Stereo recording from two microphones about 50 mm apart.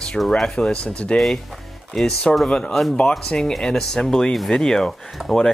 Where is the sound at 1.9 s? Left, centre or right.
Centre.